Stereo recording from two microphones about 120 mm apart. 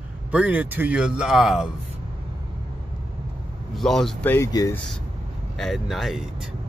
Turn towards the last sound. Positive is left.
turn(degrees=0)  # may be behind; listen again after turning